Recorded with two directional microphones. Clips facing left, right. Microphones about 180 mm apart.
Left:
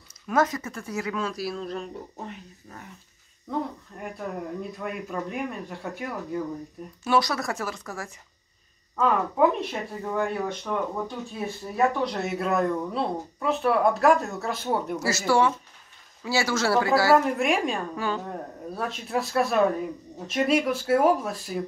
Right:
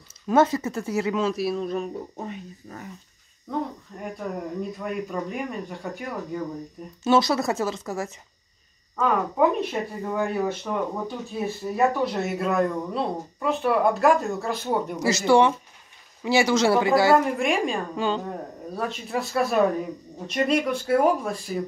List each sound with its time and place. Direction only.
0.3 s speech: 25° right (ahead or behind)
1.5 s speech: 10° right (ahead or behind)
7.1 s speech: 25° right (ahead or behind)
8.9 s speech: centre (ahead or behind)
15.0 s speech: 20° right (ahead or behind)
17.1 s speech: centre (ahead or behind)
17.9 s speech: 20° right (ahead or behind)
18.8 s speech: centre (ahead or behind)